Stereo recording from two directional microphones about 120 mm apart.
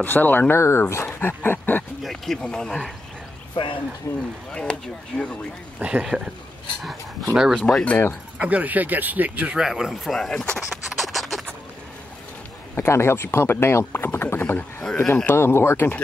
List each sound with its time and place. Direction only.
0.0 s speech: 15° left (ahead or behind)
2.0 s speech: 5° left (ahead or behind)
3.5 s speech: 45° left (ahead or behind)
4.1 s speech: 25° left (ahead or behind)
4.5 s speech: 5° left (ahead or behind)
5.8 s speech: 10° right (ahead or behind)
7.3 s speech: 5° right (ahead or behind)
7.6 s speech: 10° left (ahead or behind)
8.4 s speech: 10° right (ahead or behind); by 10.8 s 5° left (ahead or behind)
10.9 s scratch: centre (ahead or behind)
12.7 s speech: 20° left (ahead or behind)
15.3 s speech: 20° left (ahead or behind)